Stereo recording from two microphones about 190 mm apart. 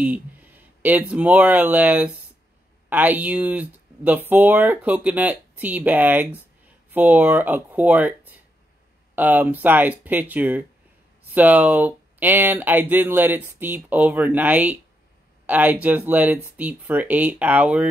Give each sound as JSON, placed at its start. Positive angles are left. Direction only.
{"t": 0.0, "sound": "speech", "side_deg": -10}